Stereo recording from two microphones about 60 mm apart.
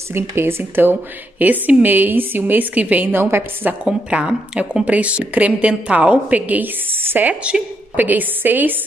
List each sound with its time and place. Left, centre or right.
0.1 s a woman's voice: right
3.8 s a woman's voice: centre